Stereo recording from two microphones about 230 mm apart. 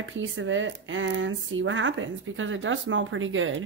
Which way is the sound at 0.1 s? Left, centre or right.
Right.